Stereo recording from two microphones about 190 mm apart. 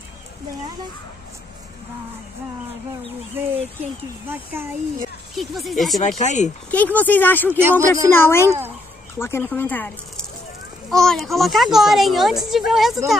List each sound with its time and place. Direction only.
3.4 s speech: 10° right (ahead or behind)
5.3 s speech: centre (ahead or behind)
6.1 s speech: 40° left (ahead or behind)
6.7 s speech: 10° left (ahead or behind)